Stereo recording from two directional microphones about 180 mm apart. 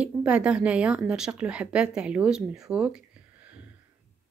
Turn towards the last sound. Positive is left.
turn(degrees=-5)  # may be behind; listen again after turning